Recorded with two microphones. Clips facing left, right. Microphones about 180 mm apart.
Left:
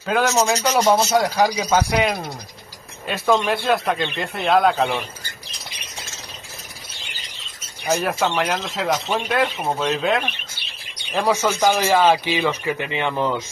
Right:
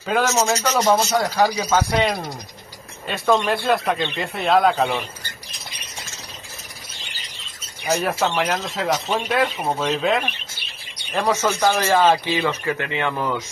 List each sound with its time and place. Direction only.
0.0 s speech: centre (ahead or behind)
0.6 s speech: 10° left (ahead or behind)
2.0 s speech: 5° left (ahead or behind)
7.8 s speech: centre (ahead or behind); by 13.1 s 20° left (ahead or behind)